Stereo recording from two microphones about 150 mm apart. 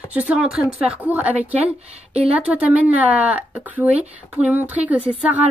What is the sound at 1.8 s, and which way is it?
Speech, 45° right (ahead or behind).